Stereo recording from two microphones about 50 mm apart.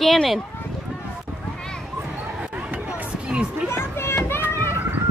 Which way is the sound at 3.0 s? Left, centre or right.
Right.